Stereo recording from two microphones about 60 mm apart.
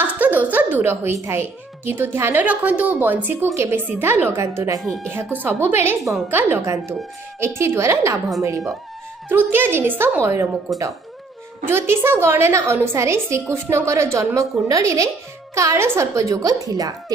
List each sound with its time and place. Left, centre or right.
0.0 s a sound: right
1.1 s speech: right
2.4 s a woman's voice: right
3.4 s a woman's voice: right
3.7 s speech: right
4.7 s speech: centre
5.0 s speech: right
6.6 s a woman's voice: right
9.3 s speech: right
10.2 s a woman's voice: right
11.6 s a woman's voice: right